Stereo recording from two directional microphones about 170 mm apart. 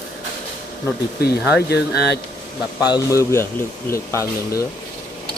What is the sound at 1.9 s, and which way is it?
Speech, 75° left (ahead or behind).